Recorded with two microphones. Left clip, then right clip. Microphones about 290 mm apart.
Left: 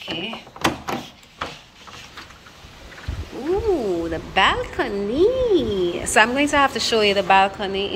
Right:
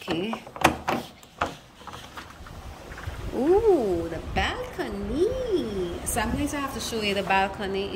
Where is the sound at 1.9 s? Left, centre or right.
Right.